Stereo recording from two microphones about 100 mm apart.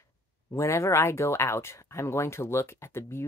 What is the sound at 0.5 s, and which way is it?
Speech, 30° left (ahead or behind).